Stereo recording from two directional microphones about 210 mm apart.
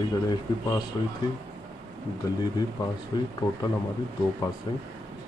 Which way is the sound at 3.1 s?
20° left (ahead or behind).